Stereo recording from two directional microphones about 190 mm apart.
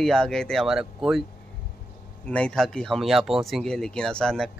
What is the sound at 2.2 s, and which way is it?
Speech, 5° left (ahead or behind).